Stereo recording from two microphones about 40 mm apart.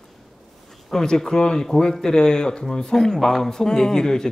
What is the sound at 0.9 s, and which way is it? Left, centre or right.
Speech, centre.